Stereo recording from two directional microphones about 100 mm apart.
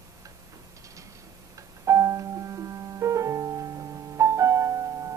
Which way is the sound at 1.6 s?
30° right (ahead or behind).